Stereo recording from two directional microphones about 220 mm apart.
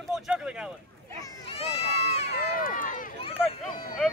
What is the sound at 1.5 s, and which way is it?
Run, 25° left (ahead or behind).